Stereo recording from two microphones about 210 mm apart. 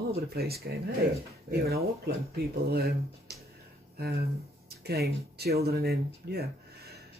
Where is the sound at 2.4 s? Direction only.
45° right (ahead or behind).